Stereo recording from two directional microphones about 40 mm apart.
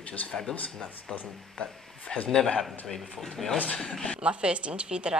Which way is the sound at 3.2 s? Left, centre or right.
Centre.